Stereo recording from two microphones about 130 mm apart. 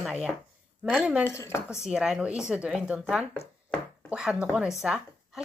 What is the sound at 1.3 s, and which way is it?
Speech, 20° left (ahead or behind).